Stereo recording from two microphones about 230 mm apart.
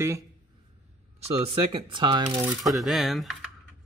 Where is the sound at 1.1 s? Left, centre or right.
Right.